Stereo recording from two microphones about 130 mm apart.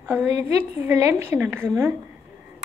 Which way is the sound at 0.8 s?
20° right (ahead or behind).